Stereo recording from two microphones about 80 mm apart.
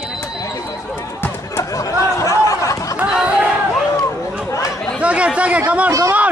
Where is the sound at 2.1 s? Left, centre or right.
Left.